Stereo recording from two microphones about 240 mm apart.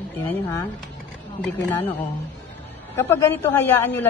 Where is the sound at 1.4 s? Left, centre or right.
Centre.